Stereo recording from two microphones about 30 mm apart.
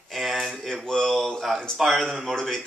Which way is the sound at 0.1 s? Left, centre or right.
Centre.